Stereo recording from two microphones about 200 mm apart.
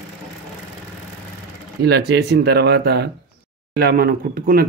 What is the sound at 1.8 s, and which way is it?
Speech, 55° right (ahead or behind).